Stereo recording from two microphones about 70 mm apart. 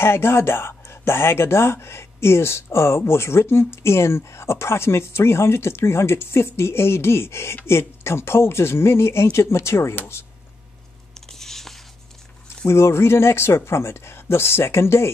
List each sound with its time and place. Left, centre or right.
0.0 s speech: left
11.1 s a sound: centre
12.6 s speech: left